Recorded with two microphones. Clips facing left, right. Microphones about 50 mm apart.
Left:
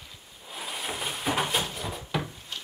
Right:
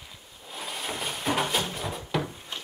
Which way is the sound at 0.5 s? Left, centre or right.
Centre.